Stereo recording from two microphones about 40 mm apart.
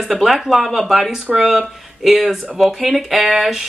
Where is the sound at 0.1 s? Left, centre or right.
Centre.